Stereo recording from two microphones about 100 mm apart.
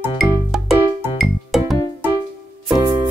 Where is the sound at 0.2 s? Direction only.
Centre (ahead or behind).